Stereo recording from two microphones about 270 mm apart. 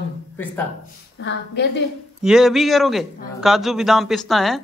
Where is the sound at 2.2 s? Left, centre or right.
Centre.